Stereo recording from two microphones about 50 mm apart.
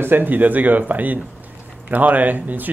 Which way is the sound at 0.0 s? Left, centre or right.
Right.